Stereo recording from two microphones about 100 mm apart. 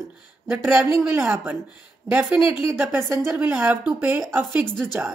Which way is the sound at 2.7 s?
25° right (ahead or behind).